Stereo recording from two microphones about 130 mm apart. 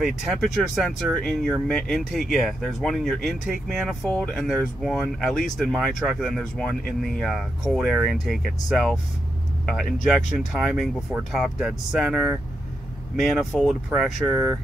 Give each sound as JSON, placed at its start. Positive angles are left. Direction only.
{"t": 0.0, "sound": "speech", "side_deg": 0}
{"t": 10.5, "sound": "speech", "side_deg": -5}
{"t": 14.3, "sound": "speech", "side_deg": -20}